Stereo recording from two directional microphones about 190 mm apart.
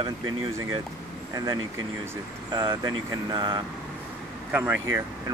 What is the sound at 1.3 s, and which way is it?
Speech, 20° right (ahead or behind).